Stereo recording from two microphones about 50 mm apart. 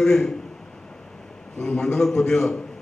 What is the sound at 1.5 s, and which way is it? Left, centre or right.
A man's voice, centre.